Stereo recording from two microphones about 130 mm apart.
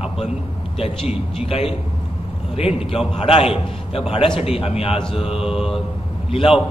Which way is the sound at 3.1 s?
50° left (ahead or behind).